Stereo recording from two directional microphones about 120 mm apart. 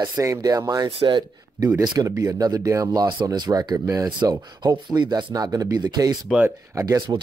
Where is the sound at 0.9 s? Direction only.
40° right (ahead or behind).